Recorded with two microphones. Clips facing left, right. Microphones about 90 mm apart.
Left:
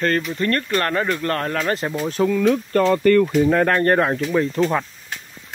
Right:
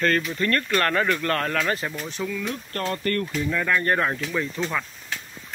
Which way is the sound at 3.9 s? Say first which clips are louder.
Left 6 dB; 30° left (ahead or behind).